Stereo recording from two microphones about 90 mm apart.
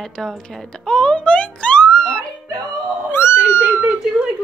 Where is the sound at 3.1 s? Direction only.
25° left (ahead or behind).